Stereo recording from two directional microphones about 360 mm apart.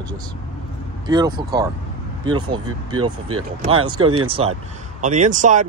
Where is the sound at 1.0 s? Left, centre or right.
Centre.